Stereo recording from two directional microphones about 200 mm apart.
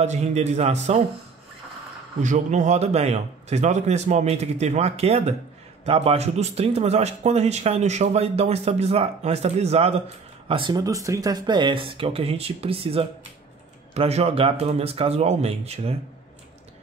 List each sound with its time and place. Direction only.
0.0 s speech: 35° right (ahead or behind)
2.2 s speech: 35° right (ahead or behind)